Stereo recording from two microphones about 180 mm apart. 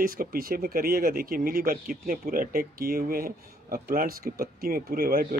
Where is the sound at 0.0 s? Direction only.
55° right (ahead or behind).